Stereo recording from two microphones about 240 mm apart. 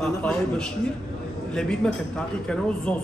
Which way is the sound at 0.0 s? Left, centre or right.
Centre.